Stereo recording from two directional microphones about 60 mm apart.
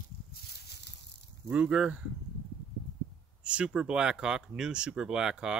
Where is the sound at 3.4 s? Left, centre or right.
Centre.